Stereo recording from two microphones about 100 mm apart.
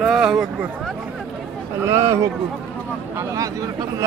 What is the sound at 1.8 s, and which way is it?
Speech, 25° right (ahead or behind).